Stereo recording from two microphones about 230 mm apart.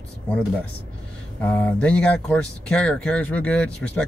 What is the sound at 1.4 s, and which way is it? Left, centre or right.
Speech, centre.